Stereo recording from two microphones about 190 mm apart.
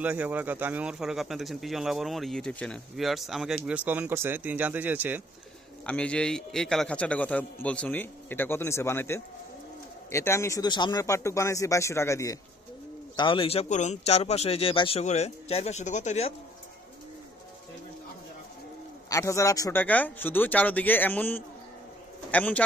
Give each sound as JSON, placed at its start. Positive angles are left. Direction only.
{"t": 0.0, "sound": "speech", "side_deg": -10}
{"t": 5.9, "sound": "a man's voice", "side_deg": 5}
{"t": 19.0, "sound": "a man's voice", "side_deg": 15}